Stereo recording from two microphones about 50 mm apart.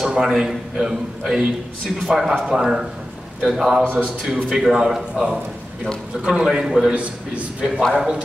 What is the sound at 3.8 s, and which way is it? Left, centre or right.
Speech, left.